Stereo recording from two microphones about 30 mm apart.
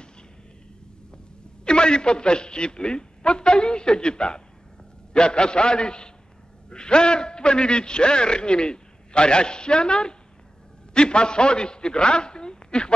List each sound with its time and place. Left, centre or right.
1.1 s a man's voice: left